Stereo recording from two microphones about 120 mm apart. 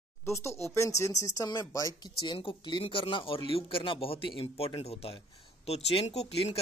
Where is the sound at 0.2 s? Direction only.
25° left (ahead or behind).